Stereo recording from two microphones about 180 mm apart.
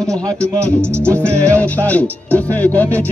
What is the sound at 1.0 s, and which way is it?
Music, 5° left (ahead or behind).